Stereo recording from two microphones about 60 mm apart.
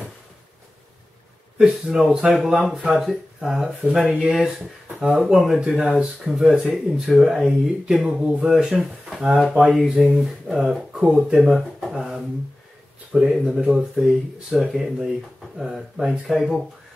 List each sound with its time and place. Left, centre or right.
1.6 s speech: centre
5.2 s speech: centre
5.8 s speech: centre
10.9 s speech: centre
11.5 s speech: centre
13.1 s speech: centre